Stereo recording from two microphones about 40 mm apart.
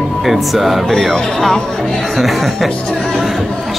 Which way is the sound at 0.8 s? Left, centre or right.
Centre.